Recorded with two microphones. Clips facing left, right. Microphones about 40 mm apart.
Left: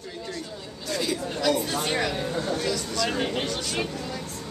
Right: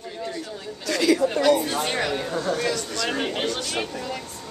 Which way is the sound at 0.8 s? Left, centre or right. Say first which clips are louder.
Right 8 dB; right.